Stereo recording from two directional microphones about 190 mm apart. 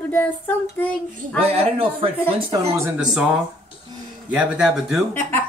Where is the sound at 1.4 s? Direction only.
30° right (ahead or behind).